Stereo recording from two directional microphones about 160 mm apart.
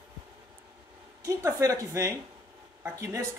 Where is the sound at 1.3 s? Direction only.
20° right (ahead or behind).